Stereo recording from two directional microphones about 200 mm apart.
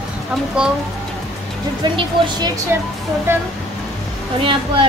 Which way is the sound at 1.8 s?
25° right (ahead or behind).